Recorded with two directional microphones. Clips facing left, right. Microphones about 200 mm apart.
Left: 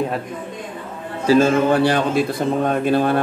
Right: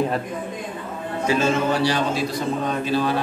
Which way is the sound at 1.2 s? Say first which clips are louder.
Left 7 dB; 35° left (ahead or behind).